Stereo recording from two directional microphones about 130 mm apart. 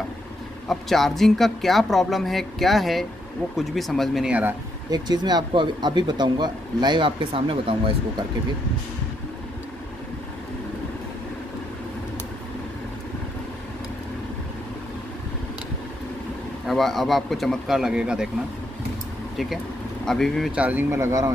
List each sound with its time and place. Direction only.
0.7 s speech: centre (ahead or behind)
4.9 s speech: 35° right (ahead or behind)
16.6 s speech: centre (ahead or behind)
20.1 s speech: 5° left (ahead or behind)
20.5 s speech: 15° right (ahead or behind)